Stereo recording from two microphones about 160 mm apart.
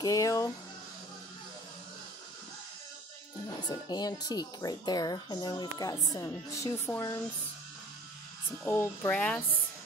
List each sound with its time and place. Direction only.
0.0 s speech: 20° left (ahead or behind)
3.6 s speech: 25° left (ahead or behind)
8.6 s speech: 15° left (ahead or behind)